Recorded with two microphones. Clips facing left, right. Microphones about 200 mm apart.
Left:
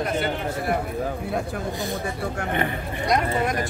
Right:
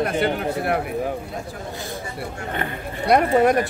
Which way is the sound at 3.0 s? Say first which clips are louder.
Right 7 dB; 60° right (ahead or behind).